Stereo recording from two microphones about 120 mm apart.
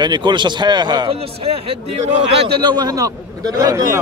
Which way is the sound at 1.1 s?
55° right (ahead or behind).